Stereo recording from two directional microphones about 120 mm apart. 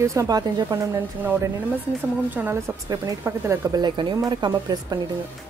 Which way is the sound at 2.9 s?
25° right (ahead or behind).